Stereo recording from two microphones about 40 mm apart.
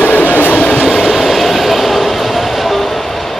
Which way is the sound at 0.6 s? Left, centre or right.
Centre.